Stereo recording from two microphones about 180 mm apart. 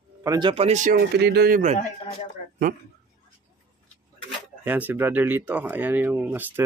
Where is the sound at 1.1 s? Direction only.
65° right (ahead or behind).